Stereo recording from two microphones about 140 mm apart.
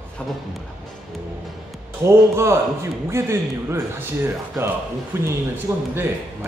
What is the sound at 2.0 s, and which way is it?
A man's voice, 20° right (ahead or behind).